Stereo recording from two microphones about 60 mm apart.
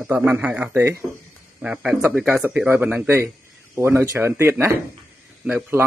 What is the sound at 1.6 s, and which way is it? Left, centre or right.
Speech, centre.